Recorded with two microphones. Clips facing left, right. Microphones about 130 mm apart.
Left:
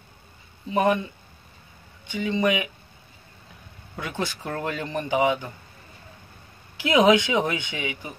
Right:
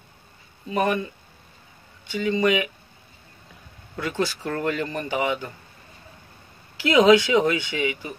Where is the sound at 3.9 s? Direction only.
15° left (ahead or behind).